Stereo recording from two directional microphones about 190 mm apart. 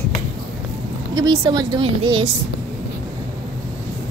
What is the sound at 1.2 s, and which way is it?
A woman's voice, 25° right (ahead or behind).